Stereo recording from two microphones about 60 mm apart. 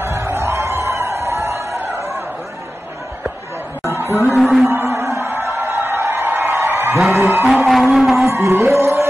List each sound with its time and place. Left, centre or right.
0.0 s a sound: right
4.4 s music: centre
4.6 s music: right
5.3 s a sound: right
7.1 s music: right
7.7 s livestock: centre
8.3 s music: right